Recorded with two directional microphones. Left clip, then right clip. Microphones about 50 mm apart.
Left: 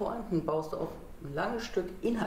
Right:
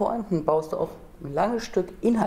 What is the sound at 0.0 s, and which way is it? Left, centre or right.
Speech, right.